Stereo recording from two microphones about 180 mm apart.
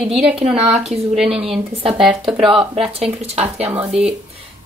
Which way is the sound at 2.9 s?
35° right (ahead or behind).